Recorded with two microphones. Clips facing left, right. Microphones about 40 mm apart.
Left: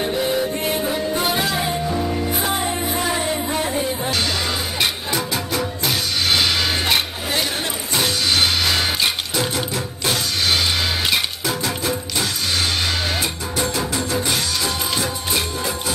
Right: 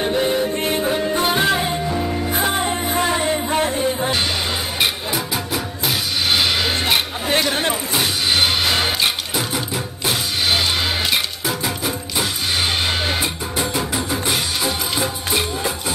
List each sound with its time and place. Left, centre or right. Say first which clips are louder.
0.0 s music: right 2 dB; right
1.9 s music: even; centre
2.4 s music: right 2 dB; right
4.7 s music: right 2 dB; centre
7.3 s a sound: right 4 dB; right
7.9 s music: left 3 dB; centre
11.1 s music: even; centre